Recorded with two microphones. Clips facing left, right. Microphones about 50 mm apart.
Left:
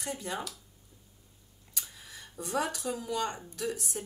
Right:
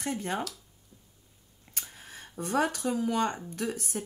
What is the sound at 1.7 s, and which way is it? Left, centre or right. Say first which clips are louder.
Speech: right 2 dB; right.